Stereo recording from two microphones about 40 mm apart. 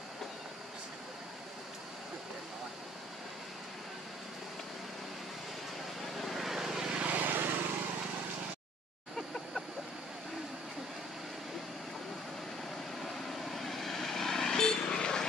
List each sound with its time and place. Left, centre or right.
6.1 s vehicle: centre
6.9 s vehicle: right
7.2 s vehicle: right
13.0 s vehicle: centre; by 15.2 s left